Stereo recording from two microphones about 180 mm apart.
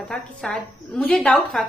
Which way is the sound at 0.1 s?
5° left (ahead or behind).